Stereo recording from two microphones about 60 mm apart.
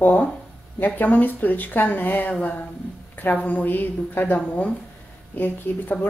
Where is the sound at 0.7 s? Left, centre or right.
Left.